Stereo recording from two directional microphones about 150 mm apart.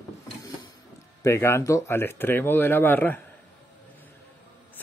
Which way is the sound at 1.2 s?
15° left (ahead or behind).